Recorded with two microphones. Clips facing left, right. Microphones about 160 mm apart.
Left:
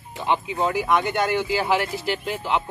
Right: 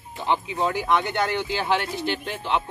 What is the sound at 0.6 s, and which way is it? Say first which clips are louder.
Speech: left 2 dB; 5° left (ahead or behind).